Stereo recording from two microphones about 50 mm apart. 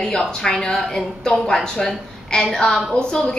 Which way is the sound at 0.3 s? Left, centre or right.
Centre.